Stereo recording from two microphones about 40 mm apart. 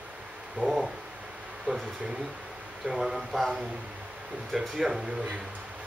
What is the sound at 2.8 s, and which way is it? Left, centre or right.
Speech, centre.